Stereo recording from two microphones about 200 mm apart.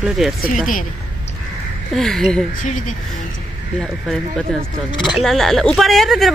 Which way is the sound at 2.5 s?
40° left (ahead or behind).